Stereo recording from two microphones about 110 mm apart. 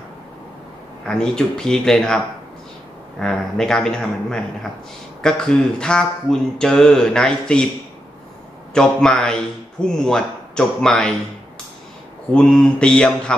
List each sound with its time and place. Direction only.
1.0 s speech: 5° left (ahead or behind)
8.7 s speech: 5° left (ahead or behind)
12.4 s speech: 10° left (ahead or behind)